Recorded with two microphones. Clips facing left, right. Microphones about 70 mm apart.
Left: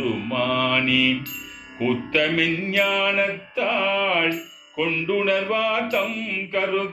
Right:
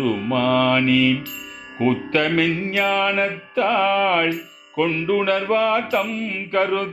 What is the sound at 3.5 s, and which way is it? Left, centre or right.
Speech, right.